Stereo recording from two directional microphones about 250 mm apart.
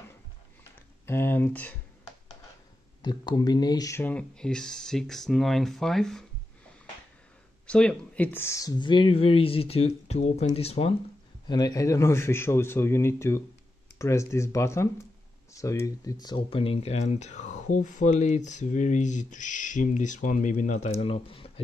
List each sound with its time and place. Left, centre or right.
1.0 s a man's voice: centre
3.0 s speech: centre
7.6 s a man's voice: centre; by 21.5 s left